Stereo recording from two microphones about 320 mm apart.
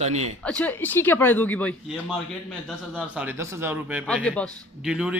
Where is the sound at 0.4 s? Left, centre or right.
Centre.